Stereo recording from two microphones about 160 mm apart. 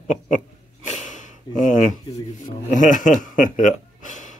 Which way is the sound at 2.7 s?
55° left (ahead or behind).